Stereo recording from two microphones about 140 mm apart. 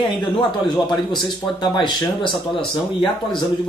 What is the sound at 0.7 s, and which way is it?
Speech, 30° left (ahead or behind).